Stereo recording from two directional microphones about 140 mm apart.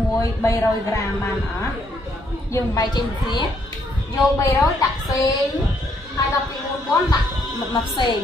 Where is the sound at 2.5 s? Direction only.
25° left (ahead or behind).